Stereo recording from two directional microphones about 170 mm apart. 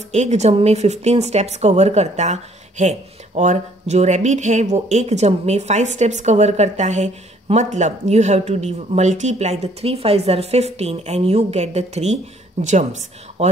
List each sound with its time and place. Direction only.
0.1 s a woman's voice: 40° right (ahead or behind)